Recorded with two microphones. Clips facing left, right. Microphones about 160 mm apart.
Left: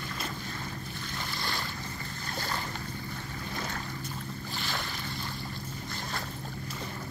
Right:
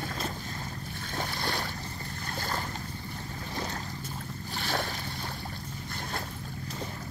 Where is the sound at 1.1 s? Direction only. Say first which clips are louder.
Right 4 dB; 55° right (ahead or behind).